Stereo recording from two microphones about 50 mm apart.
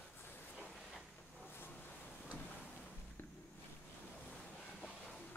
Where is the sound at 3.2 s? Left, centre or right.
Left.